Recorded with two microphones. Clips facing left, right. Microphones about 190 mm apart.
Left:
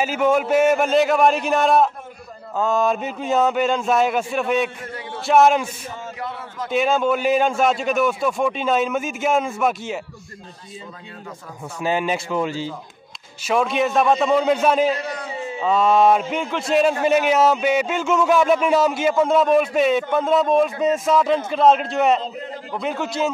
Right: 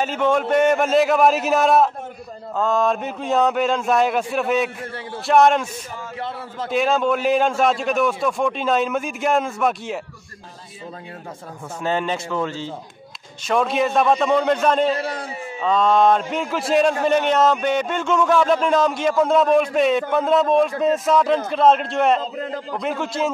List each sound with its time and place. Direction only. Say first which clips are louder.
0.0 s speech: left 1 dB; 5° left (ahead or behind)
6.7 s speech: even; centre (ahead or behind)
11.8 s a man's voice: left 1 dB; 10° left (ahead or behind)
13.5 s speech: even; centre (ahead or behind)
14.9 s a man's voice: right 1 dB; 30° right (ahead or behind)
15.6 s speech: even; 5° left (ahead or behind)